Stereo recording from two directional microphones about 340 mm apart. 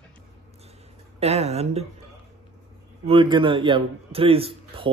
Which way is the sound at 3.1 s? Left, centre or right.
Centre.